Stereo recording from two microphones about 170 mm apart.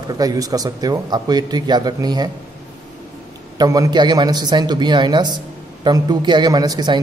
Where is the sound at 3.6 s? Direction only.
20° right (ahead or behind).